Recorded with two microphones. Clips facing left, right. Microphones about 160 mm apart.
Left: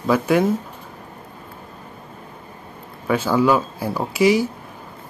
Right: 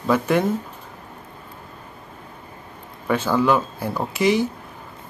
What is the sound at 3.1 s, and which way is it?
Speech, 5° left (ahead or behind).